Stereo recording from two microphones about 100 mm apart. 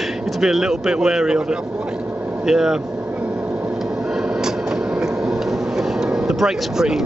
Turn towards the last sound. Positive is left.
turn(degrees=-5)  # may be behind; listen again after turning